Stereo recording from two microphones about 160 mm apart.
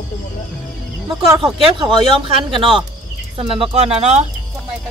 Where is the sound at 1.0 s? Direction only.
30° right (ahead or behind).